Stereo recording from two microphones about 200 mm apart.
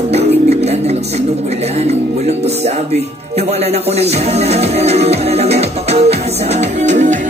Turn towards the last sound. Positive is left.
turn(degrees=-35)  # may be behind; listen again after turning